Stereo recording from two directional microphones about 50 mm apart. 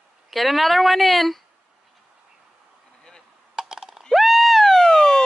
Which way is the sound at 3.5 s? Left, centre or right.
Centre.